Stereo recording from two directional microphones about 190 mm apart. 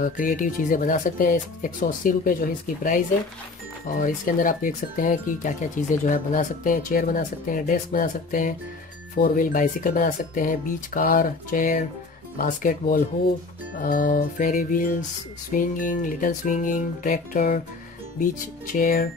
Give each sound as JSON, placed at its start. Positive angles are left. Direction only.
{"t": 0.0, "sound": "speech", "side_deg": 45}